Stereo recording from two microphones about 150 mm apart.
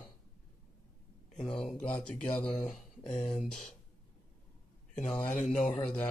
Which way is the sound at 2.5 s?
50° left (ahead or behind).